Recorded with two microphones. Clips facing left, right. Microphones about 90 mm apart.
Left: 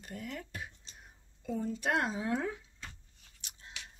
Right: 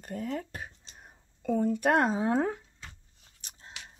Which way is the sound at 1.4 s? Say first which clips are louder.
Right 8 dB; 60° right (ahead or behind).